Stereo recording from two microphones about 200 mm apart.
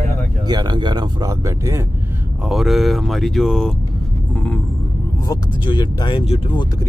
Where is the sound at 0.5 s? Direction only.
20° right (ahead or behind).